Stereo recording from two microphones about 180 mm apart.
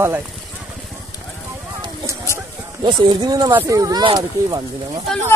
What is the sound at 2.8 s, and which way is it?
Speech, 25° right (ahead or behind).